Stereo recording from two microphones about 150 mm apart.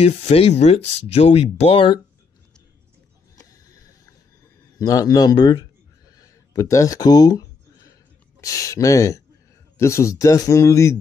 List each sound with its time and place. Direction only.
0.0 s speech: 45° left (ahead or behind)
4.7 s a man's voice: 25° left (ahead or behind)